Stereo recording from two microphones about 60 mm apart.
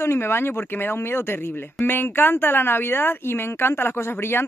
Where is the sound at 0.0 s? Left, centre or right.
Left.